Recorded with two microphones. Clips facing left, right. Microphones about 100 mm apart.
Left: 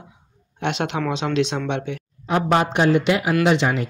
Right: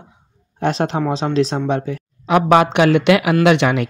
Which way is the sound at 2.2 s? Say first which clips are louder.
Right 6 dB; 90° right.